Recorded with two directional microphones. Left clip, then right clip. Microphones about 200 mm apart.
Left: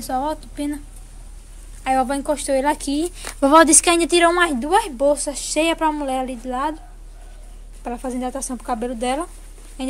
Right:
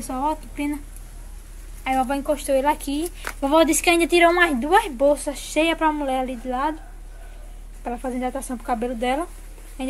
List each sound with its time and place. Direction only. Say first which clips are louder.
0.0 s speech: left 2 dB; 20° left (ahead or behind)
1.9 s speech: left 2 dB; 25° left (ahead or behind)
7.8 s speech: left 1 dB; 15° left (ahead or behind)